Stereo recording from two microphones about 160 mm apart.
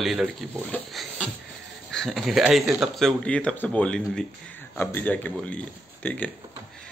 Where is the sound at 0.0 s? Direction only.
Centre (ahead or behind).